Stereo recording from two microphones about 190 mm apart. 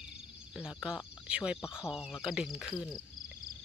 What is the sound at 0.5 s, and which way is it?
Speech, 5° right (ahead or behind).